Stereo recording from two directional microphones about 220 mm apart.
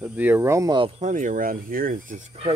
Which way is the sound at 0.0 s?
5° right (ahead or behind).